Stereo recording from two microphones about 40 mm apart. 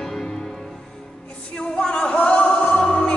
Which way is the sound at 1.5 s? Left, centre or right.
Left.